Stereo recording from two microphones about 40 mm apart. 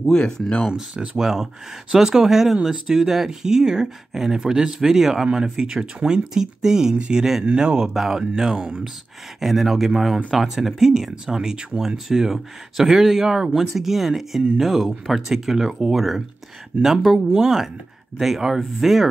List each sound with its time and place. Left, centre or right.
0.1 s speech: centre
1.1 s speech: centre
9.4 s speech: centre